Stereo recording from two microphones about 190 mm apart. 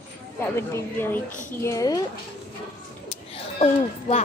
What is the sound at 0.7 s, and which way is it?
Speech, 10° left (ahead or behind).